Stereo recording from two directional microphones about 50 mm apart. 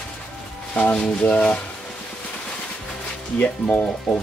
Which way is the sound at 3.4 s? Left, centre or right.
Left.